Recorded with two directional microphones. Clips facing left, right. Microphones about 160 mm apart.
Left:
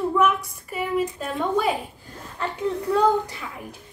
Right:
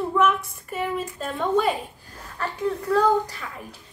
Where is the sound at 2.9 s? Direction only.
20° left (ahead or behind).